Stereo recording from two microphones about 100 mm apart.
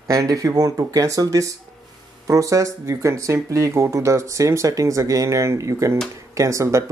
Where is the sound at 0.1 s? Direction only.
35° right (ahead or behind).